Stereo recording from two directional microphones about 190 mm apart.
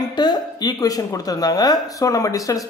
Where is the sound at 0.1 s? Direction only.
20° left (ahead or behind).